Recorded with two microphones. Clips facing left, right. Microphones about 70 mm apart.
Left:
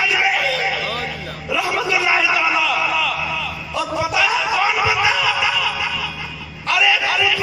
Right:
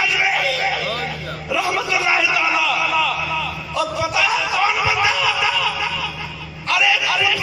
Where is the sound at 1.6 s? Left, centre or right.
Centre.